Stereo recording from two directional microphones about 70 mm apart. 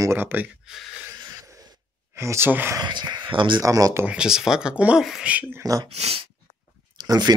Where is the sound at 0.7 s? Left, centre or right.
Centre.